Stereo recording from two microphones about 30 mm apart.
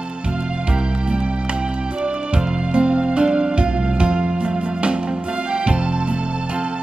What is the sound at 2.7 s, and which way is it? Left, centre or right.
Music, right.